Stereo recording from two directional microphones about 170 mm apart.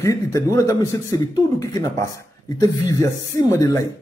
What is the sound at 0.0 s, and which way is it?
Speech, 20° left (ahead or behind).